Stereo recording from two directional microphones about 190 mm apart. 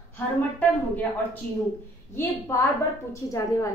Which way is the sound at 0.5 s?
10° left (ahead or behind).